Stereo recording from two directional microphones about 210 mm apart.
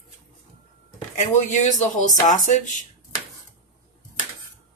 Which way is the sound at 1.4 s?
35° left (ahead or behind).